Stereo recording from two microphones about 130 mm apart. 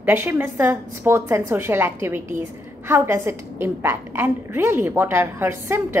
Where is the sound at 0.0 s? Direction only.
15° right (ahead or behind).